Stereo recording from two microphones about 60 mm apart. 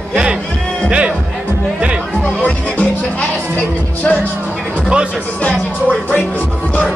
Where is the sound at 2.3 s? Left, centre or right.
Left.